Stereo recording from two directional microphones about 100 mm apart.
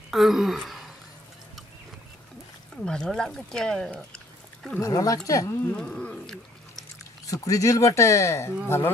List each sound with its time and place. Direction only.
0.1 s speech: centre (ahead or behind)
2.7 s speech: 5° left (ahead or behind)
4.7 s speech: 35° left (ahead or behind)
5.8 s a sound: 10° left (ahead or behind)
7.4 s speech: 35° left (ahead or behind)